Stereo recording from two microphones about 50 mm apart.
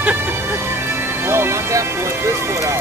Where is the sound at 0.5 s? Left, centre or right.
Right.